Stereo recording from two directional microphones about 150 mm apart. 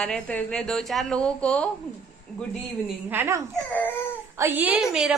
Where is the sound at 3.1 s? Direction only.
15° right (ahead or behind).